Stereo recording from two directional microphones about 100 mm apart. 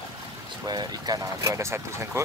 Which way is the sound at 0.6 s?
45° right (ahead or behind).